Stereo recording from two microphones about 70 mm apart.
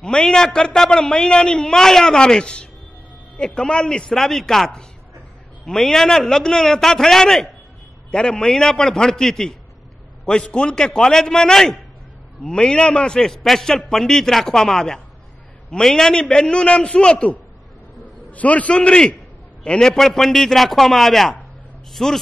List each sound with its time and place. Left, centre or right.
0.0 s a man's voice: centre